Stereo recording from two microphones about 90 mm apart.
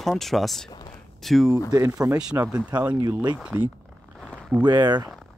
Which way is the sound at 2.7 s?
55° right (ahead or behind).